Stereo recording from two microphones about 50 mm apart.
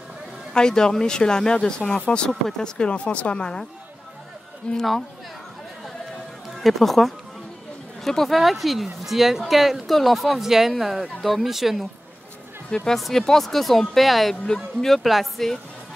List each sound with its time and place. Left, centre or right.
0.5 s speech: centre
4.6 s speech: centre
6.6 s speech: centre
12.9 s speech: centre
14.4 s speech: centre
14.9 s speech: centre